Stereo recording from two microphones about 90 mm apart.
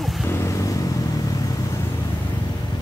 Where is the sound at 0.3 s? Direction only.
35° left (ahead or behind).